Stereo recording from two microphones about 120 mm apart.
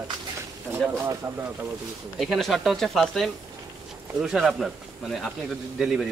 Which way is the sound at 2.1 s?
Centre (ahead or behind).